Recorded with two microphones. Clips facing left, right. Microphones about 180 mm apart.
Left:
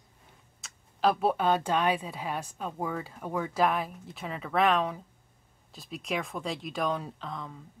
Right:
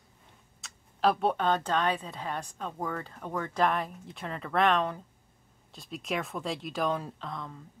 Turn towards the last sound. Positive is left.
turn(degrees=0)  # may be behind; listen again after turning